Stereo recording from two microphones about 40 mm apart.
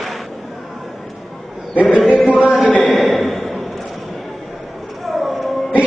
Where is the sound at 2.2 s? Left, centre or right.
Left.